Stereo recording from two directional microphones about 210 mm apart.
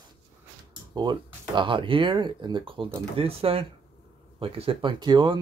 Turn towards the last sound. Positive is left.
turn(degrees=-20)  # may be behind; listen again after turning